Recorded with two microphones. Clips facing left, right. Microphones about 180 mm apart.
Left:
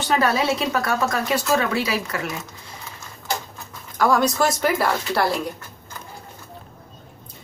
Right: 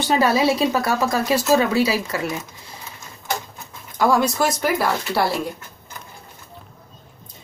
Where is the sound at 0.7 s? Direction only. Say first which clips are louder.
Right 2 dB; 30° right (ahead or behind).